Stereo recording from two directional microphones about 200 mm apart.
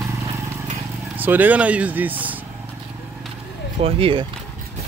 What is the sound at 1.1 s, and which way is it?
Speech, 10° right (ahead or behind).